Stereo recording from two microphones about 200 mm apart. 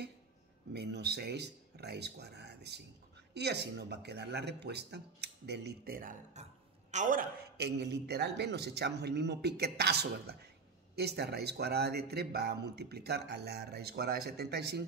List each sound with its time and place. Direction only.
0.7 s speech: 55° right (ahead or behind)